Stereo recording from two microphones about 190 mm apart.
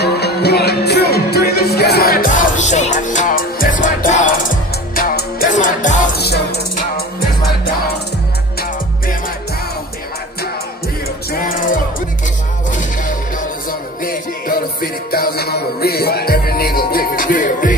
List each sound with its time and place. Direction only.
0.0 s music: 60° left (ahead or behind); by 6.1 s 40° left (ahead or behind)
6.1 s music: 60° left (ahead or behind)
11.4 s music: 45° left (ahead or behind)
14.8 s music: 50° left (ahead or behind)